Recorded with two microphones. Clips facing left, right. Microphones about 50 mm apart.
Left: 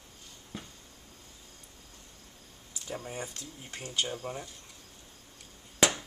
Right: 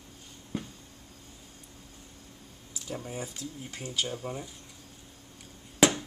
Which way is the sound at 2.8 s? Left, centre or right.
Centre.